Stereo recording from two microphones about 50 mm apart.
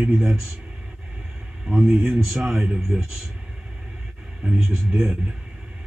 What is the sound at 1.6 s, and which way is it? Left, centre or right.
Speech, centre.